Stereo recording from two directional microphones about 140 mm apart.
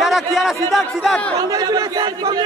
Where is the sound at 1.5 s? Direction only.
30° right (ahead or behind).